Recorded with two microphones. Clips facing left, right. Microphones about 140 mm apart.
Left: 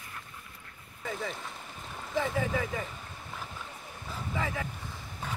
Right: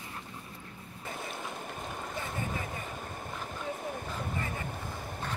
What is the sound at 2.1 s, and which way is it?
Boat, 90° left.